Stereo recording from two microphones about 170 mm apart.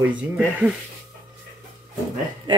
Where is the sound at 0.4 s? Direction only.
10° right (ahead or behind).